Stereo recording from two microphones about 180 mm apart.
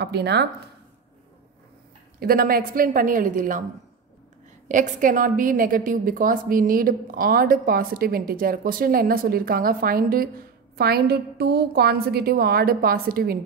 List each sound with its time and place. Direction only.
0.0 s speech: 70° right (ahead or behind)
2.1 s a woman's voice: 55° right (ahead or behind)
4.6 s a woman's voice: 45° right (ahead or behind)